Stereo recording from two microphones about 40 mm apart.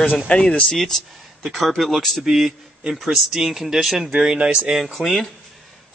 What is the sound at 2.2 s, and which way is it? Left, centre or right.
Speech, centre.